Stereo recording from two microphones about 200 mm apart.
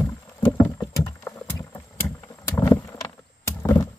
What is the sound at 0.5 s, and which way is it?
Rowboat, 15° left (ahead or behind).